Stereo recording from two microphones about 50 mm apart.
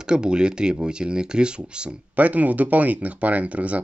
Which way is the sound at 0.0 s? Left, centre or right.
Centre.